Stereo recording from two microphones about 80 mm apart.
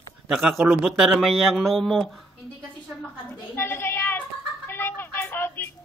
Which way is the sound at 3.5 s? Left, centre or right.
Left.